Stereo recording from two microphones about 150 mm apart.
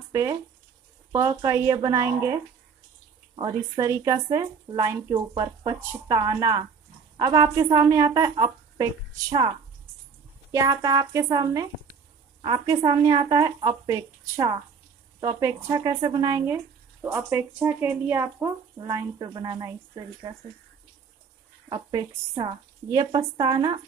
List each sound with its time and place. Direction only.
0.1 s speech: 20° right (ahead or behind)
1.4 s a woman's voice: 25° right (ahead or behind)
10.5 s speech: 25° right (ahead or behind)
12.4 s a woman's voice: 35° right (ahead or behind)
13.8 s a woman's voice: 20° right (ahead or behind)
15.4 s speech: 20° right (ahead or behind)
21.6 s a woman's voice: 30° right (ahead or behind)